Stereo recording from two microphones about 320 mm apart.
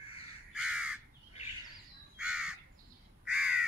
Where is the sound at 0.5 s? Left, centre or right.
Centre.